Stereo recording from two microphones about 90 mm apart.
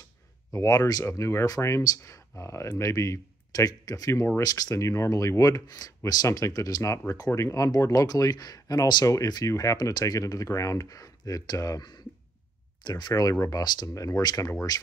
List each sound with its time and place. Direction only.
0.5 s speech: 40° left (ahead or behind)
12.8 s speech: 45° left (ahead or behind)